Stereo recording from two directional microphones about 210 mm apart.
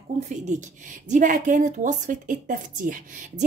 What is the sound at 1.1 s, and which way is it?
A woman's voice, 40° right (ahead or behind).